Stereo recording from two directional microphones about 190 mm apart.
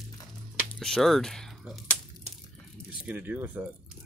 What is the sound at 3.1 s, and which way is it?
Speech, 10° right (ahead or behind).